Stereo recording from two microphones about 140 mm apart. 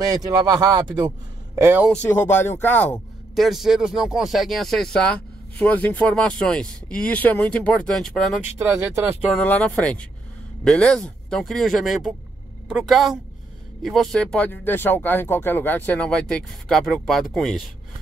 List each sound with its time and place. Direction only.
0.0 s a man's voice: 25° right (ahead or behind)
1.6 s speech: 15° right (ahead or behind)
2.0 s speech: 15° left (ahead or behind)
3.3 s speech: centre (ahead or behind)
8.5 s speech: 15° right (ahead or behind)
9.4 s speech: 10° left (ahead or behind)